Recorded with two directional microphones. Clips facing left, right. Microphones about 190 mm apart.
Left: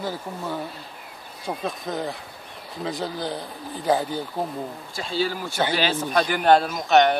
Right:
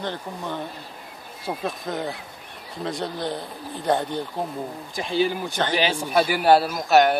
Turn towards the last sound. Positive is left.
turn(degrees=-5)  # may be behind; listen again after turning